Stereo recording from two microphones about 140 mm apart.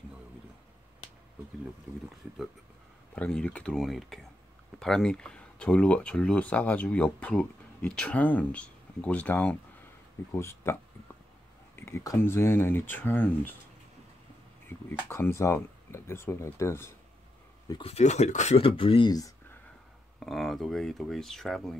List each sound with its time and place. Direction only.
3.2 s speech: 5° left (ahead or behind)
14.7 s speech: 15° left (ahead or behind)
17.8 s speech: 50° left (ahead or behind)
18.6 s speech: 40° left (ahead or behind)
20.2 s speech: centre (ahead or behind)